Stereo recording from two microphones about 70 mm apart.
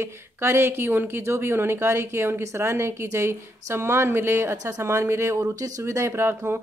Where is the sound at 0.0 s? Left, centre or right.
Right.